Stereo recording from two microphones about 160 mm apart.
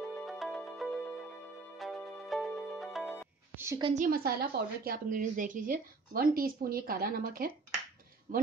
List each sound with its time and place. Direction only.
0.0 s music: centre (ahead or behind)
3.5 s a woman's voice: 15° right (ahead or behind)
3.9 s a woman's voice: 60° right (ahead or behind)